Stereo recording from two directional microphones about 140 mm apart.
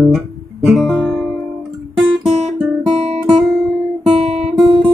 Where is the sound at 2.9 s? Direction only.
45° right (ahead or behind).